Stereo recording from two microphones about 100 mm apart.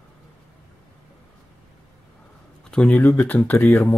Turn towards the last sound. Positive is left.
turn(degrees=15)  # may be behind; listen again after turning